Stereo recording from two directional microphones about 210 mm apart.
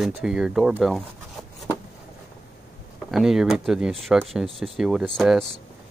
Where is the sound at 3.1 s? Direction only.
Centre (ahead or behind).